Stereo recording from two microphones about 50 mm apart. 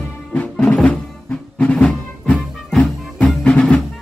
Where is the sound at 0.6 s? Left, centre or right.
Centre.